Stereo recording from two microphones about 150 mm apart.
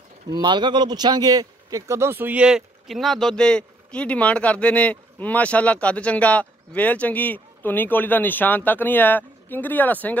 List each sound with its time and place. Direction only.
0.3 s speech: 30° right (ahead or behind); by 10.1 s 10° left (ahead or behind)